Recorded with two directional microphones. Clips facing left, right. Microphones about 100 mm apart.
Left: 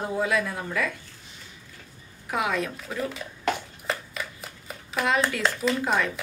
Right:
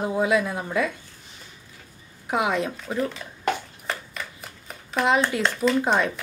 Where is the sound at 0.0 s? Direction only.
20° right (ahead or behind).